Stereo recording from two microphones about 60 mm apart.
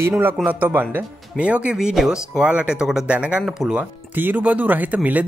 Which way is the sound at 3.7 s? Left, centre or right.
Right.